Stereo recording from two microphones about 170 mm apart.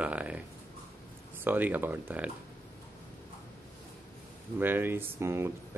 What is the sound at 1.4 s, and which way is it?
Speech, 10° right (ahead or behind).